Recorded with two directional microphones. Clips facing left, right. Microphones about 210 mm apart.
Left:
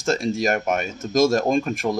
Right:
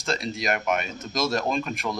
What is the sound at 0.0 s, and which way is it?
Speech, 45° left (ahead or behind).